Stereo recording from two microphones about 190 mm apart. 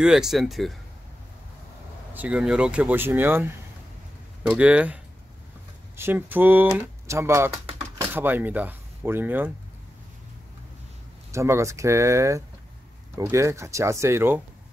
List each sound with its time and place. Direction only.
0.0 s speech: 5° right (ahead or behind)
2.1 s speech: 5° right (ahead or behind)
11.3 s speech: 15° right (ahead or behind)